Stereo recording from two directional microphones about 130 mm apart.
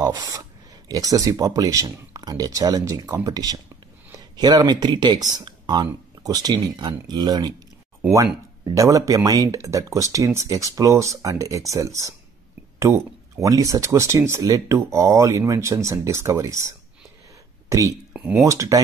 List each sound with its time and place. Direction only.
0.0 s speech: 25° right (ahead or behind)
8.7 s speech: 25° right (ahead or behind)
18.1 s speech: 10° right (ahead or behind)
18.4 s speech: 25° right (ahead or behind)